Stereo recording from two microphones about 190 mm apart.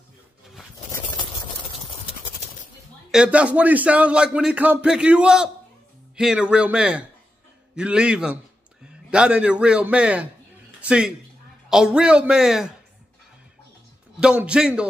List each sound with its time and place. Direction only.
3.1 s a man's voice: 5° right (ahead or behind)
14.2 s a man's voice: 5° right (ahead or behind)